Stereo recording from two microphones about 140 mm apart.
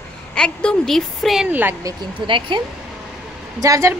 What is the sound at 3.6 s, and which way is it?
Speech, 25° right (ahead or behind).